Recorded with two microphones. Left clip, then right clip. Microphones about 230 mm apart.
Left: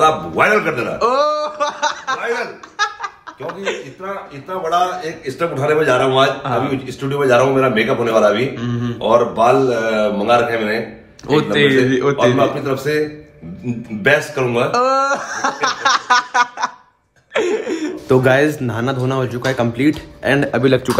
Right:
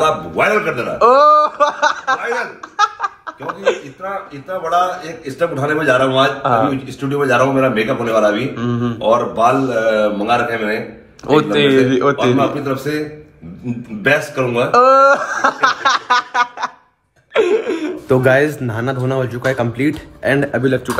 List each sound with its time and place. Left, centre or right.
0.0 s a man's voice: centre
2.8 s snicker: centre
4.6 s a man's voice: centre
14.0 s a man's voice: centre
14.7 s a man's voice: centre
17.3 s a sound: centre
18.0 s a man's voice: centre